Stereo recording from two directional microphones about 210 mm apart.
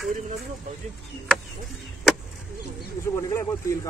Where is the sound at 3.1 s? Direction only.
15° left (ahead or behind).